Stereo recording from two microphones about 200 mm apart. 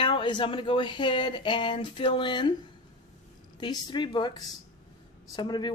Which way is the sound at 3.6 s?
20° left (ahead or behind).